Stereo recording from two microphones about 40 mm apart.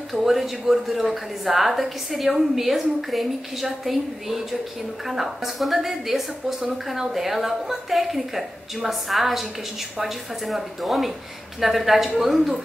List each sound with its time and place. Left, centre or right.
0.1 s a woman's voice: centre